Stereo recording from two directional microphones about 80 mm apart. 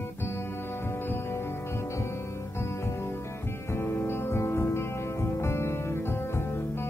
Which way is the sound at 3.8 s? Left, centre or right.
Left.